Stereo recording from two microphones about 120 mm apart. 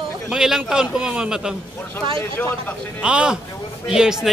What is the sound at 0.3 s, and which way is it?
A man's voice, 5° right (ahead or behind).